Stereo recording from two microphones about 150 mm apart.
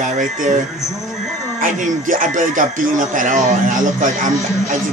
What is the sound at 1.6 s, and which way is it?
Speech, 60° right (ahead or behind).